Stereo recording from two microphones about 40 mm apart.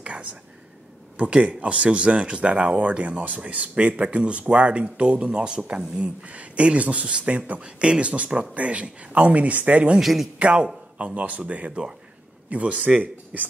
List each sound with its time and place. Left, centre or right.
1.1 s speech: right
7.6 s speech: right
9.9 s speech: centre
10.4 s a man's voice: right